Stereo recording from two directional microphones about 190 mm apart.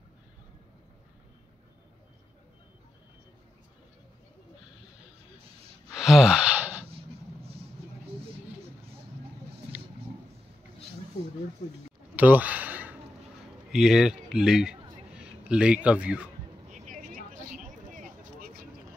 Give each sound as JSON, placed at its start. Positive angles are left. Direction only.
{"t": 5.9, "sound": "wheeze", "side_deg": 0}
{"t": 12.2, "sound": "a sound", "side_deg": -10}
{"t": 13.7, "sound": "a man's voice", "side_deg": -5}
{"t": 16.7, "sound": "vehicle", "side_deg": -40}